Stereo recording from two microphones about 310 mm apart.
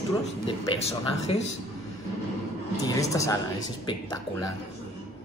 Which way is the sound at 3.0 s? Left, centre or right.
Centre.